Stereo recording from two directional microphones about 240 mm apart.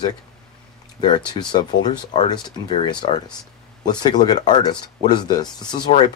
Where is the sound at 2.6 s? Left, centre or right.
Centre.